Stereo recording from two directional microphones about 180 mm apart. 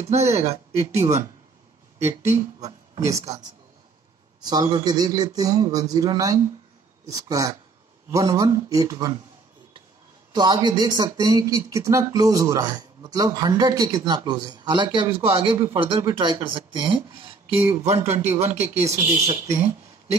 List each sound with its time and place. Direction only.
0.0 s speech: 35° right (ahead or behind)
4.4 s speech: 25° right (ahead or behind)
10.3 s speech: 25° right (ahead or behind)
17.6 s speech: 15° right (ahead or behind)
18.1 s speech: 35° right (ahead or behind)